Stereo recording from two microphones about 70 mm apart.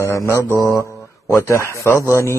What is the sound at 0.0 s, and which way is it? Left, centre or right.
Mantra, left.